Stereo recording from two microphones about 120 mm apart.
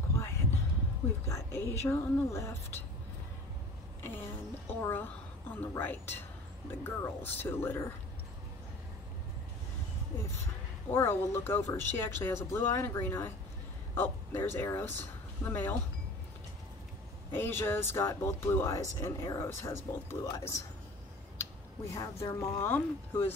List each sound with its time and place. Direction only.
0.1 s a sound: 25° left (ahead or behind)
1.2 s speech: 25° left (ahead or behind)
4.0 s a woman's voice: 15° left (ahead or behind)
10.9 s speech: 20° left (ahead or behind)
17.3 s speech: 20° left (ahead or behind)
21.9 s speech: 25° left (ahead or behind)